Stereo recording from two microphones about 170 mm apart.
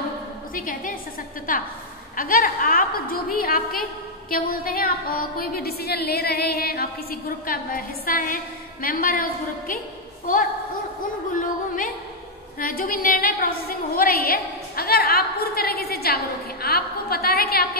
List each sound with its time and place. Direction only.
0.6 s a woman's voice: 50° left (ahead or behind)
12.5 s a woman's voice: 55° left (ahead or behind)